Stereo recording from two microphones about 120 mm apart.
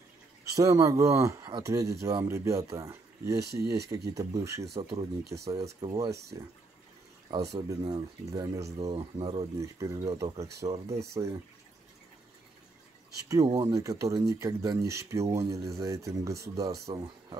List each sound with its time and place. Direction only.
0.6 s speech: 25° right (ahead or behind)
5.8 s speech: 40° right (ahead or behind)
6.3 s speech: 25° right (ahead or behind)
8.9 s speech: 50° right (ahead or behind)
9.6 s speech: 25° right (ahead or behind)
13.6 s speech: 25° right (ahead or behind)